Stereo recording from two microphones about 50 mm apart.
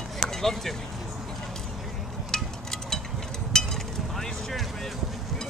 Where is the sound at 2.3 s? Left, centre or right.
Centre.